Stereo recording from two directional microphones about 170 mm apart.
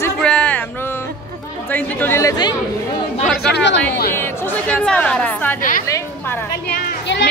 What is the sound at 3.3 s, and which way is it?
Speech, 85° left.